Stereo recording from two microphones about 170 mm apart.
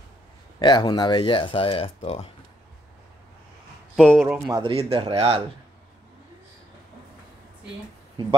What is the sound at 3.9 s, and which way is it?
Speech, centre (ahead or behind).